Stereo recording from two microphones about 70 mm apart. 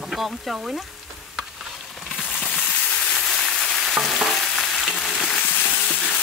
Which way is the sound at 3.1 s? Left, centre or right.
Centre.